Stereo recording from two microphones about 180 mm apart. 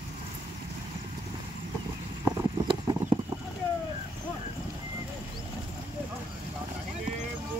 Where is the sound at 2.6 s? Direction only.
25° right (ahead or behind).